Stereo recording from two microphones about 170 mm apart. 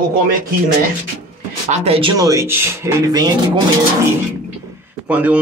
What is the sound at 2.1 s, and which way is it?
Speech, 20° right (ahead or behind).